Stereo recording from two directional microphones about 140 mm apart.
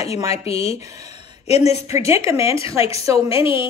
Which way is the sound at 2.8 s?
45° left (ahead or behind).